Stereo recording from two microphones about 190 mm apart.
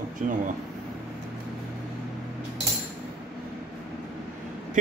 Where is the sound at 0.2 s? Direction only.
40° right (ahead or behind).